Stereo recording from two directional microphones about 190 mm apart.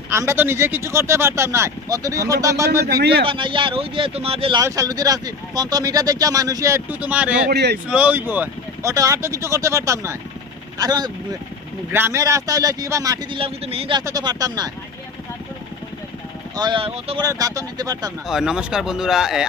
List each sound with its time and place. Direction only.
0.1 s speech: 15° right (ahead or behind)
3.0 s speech: 60° right (ahead or behind)
3.3 s speech: 25° right (ahead or behind)
4.6 s speech: 20° right (ahead or behind)
7.5 s speech: 60° right (ahead or behind)
7.9 s speech: 10° right (ahead or behind)
16.5 s speech: 25° right (ahead or behind)
17.2 s speech: 20° right (ahead or behind)
18.2 s speech: 5° right (ahead or behind)